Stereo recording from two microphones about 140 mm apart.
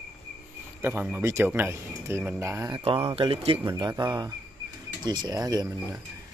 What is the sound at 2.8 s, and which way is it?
Speech, 45° right (ahead or behind).